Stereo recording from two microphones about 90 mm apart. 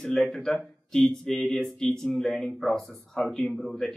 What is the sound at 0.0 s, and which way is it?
A man's voice, 10° left (ahead or behind).